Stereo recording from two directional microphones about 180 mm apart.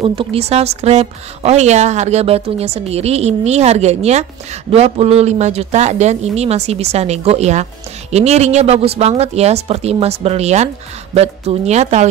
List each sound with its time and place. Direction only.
0.0 s speech: 30° right (ahead or behind)